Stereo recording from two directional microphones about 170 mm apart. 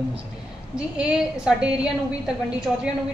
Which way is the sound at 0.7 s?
5° right (ahead or behind).